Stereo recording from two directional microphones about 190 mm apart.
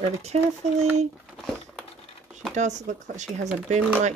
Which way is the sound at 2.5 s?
40° right (ahead or behind).